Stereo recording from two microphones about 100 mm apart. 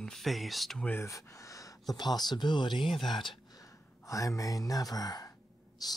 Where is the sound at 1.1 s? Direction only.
30° left (ahead or behind).